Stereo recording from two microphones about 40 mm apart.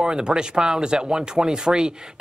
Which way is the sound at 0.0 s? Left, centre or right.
Centre.